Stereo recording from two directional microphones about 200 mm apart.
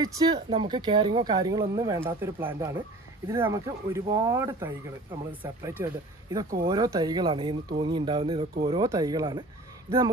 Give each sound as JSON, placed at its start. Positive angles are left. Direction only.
{"t": 0.0, "sound": "speech", "side_deg": -20}